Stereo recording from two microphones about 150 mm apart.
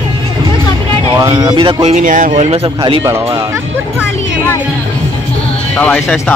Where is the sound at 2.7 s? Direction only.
30° right (ahead or behind).